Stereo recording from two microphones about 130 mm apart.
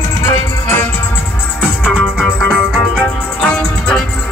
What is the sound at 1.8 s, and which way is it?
Music, 5° left (ahead or behind).